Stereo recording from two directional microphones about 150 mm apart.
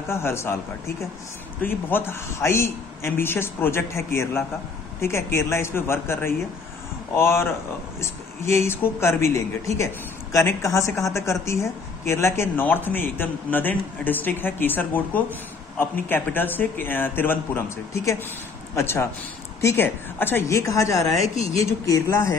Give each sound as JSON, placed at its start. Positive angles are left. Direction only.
{"t": 0.1, "sound": "speech", "side_deg": 15}
{"t": 1.6, "sound": "a woman's voice", "side_deg": 15}